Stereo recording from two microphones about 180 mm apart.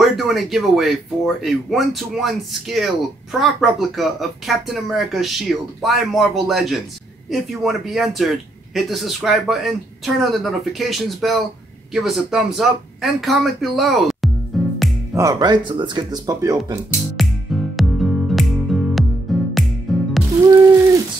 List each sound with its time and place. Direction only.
0.0 s speech: centre (ahead or behind)
14.5 s music: centre (ahead or behind)
15.1 s speech: 20° right (ahead or behind)
17.2 s music: centre (ahead or behind)